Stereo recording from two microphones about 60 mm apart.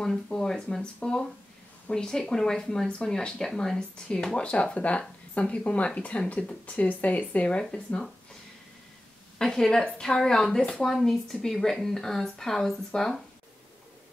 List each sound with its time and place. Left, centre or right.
0.0 s speech: centre
1.9 s speech: centre
9.4 s speech: centre